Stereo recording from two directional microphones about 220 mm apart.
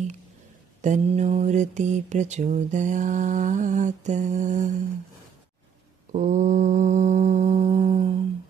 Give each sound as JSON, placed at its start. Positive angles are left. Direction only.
{"t": 0.8, "sound": "mantra", "side_deg": -30}
{"t": 6.1, "sound": "mantra", "side_deg": -35}